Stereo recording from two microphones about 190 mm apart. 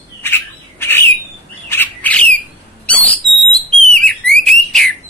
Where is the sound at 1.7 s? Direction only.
10° left (ahead or behind).